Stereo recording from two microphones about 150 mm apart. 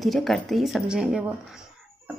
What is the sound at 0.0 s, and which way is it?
A woman's voice, centre (ahead or behind).